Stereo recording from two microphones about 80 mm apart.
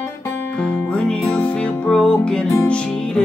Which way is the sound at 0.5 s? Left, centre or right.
Centre.